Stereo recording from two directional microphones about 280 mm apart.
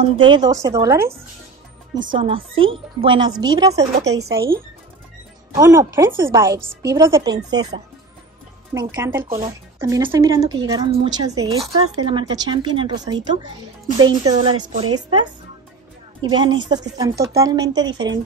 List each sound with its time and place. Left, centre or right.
0.2 s speech: centre
2.1 s speech: centre
5.6 s speech: centre
9.2 s speech: right